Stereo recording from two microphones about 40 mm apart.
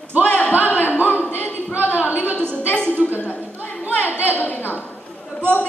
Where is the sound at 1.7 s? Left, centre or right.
Right.